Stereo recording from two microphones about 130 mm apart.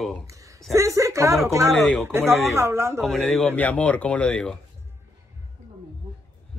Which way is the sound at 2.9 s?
Centre (ahead or behind).